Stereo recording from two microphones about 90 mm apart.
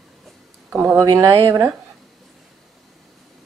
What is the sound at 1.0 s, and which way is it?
Speech, 35° right (ahead or behind).